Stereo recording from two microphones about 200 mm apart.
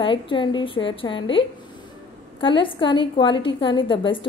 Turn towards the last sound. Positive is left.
turn(degrees=25)  # may be behind; listen again after turning